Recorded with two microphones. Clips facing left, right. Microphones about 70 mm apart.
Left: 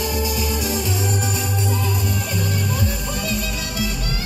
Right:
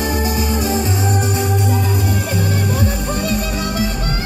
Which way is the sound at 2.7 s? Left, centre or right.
Right.